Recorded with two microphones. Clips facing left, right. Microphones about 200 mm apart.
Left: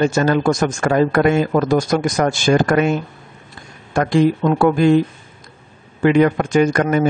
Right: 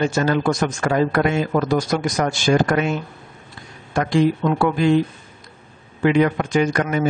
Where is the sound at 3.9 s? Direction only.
50° left (ahead or behind).